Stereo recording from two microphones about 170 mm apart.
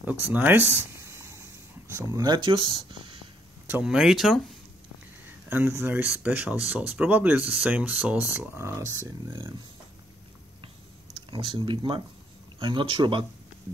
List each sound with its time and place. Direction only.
0.0 s speech: 10° right (ahead or behind); by 3.3 s 30° right (ahead or behind)
3.6 s speech: 5° right (ahead or behind)
5.5 s speech: 15° right (ahead or behind)
11.2 s speech: 30° right (ahead or behind)